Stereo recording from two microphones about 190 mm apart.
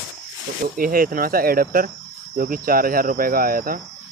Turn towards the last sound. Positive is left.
turn(degrees=-50)  # may be behind; listen again after turning